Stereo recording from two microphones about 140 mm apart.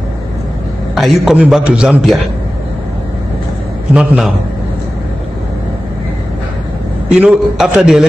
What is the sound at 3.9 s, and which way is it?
Speech, 5° right (ahead or behind).